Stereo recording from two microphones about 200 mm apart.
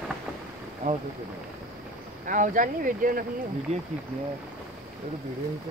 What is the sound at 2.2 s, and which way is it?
Speech, 40° right (ahead or behind).